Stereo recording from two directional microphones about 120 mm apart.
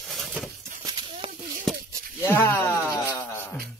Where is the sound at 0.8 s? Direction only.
40° right (ahead or behind).